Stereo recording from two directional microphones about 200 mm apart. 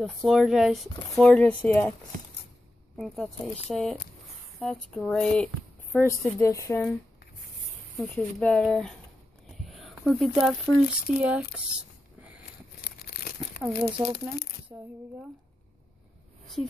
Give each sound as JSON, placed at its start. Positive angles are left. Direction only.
{"t": 0.0, "sound": "speech", "side_deg": 0}
{"t": 3.7, "sound": "speech", "side_deg": 0}
{"t": 8.0, "sound": "speech", "side_deg": 5}
{"t": 9.7, "sound": "a sound", "side_deg": 0}
{"t": 11.1, "sound": "speech", "side_deg": -5}
{"t": 12.8, "sound": "crumpling", "side_deg": 50}
{"t": 13.6, "sound": "speech", "side_deg": -5}
{"t": 14.1, "sound": "speech", "side_deg": 50}
{"t": 16.6, "sound": "speech", "side_deg": 0}